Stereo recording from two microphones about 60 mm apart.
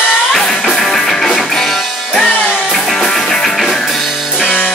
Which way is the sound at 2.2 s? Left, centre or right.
Left.